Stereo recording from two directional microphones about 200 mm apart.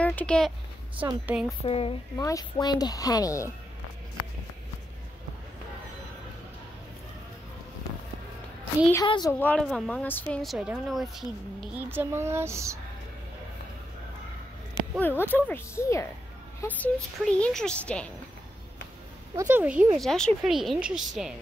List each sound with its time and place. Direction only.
0.0 s speech: 10° left (ahead or behind)
1.2 s speech: 5° right (ahead or behind)
1.6 s a woman's voice: 30° left (ahead or behind)
2.1 s speech: 15° left (ahead or behind)
8.9 s a woman's voice: 20° left (ahead or behind)
9.4 s speech: 5° left (ahead or behind); by 12.7 s 15° right (ahead or behind)
15.0 s speech: 10° left (ahead or behind)
19.3 s speech: 10° right (ahead or behind)
20.0 s speech: 5° left (ahead or behind)